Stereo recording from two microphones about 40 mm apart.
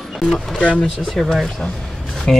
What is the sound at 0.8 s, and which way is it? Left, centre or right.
Speech, centre.